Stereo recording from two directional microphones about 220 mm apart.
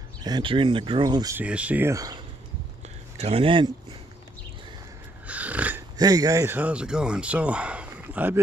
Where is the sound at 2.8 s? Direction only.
30° right (ahead or behind).